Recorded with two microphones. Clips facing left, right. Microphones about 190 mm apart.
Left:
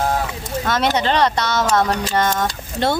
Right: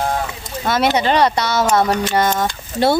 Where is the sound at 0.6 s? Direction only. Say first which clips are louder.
Right 3 dB; 10° right (ahead or behind).